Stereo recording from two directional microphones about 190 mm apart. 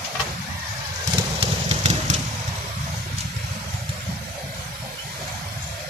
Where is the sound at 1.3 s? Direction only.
35° right (ahead or behind).